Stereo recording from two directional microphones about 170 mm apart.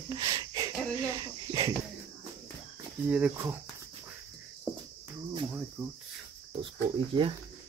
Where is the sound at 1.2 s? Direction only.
25° right (ahead or behind).